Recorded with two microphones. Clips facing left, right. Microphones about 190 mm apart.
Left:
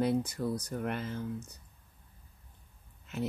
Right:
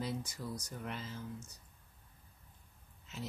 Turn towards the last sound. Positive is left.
turn(degrees=55)  # may be behind; listen again after turning